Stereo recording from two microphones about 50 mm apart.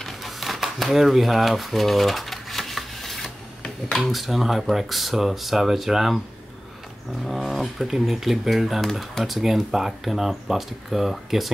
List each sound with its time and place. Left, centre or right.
0.0 s a sound: centre
4.1 s speech: centre
7.2 s speech: centre